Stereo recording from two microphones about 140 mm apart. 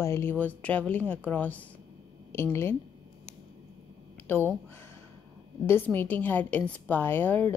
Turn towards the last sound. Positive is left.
turn(degrees=15)  # may be behind; listen again after turning